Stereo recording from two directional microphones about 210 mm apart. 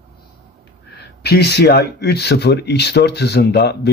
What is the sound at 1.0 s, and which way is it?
Speech, 50° left (ahead or behind).